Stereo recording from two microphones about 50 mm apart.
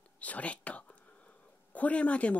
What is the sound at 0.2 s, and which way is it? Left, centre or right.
Speech, left.